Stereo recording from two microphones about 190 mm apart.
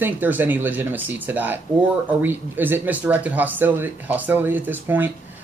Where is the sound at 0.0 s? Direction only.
10° right (ahead or behind).